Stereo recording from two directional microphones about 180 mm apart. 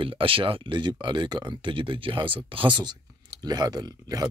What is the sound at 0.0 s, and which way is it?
Speech, 30° right (ahead or behind).